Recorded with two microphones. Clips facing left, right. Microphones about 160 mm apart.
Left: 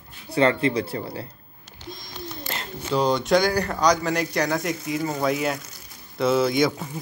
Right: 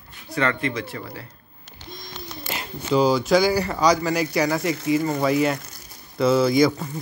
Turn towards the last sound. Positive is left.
turn(degrees=0)  # may be behind; listen again after turning